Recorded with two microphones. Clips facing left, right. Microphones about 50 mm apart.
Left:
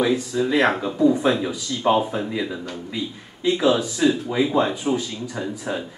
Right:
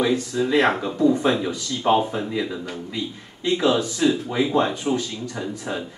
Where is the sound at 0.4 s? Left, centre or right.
Centre.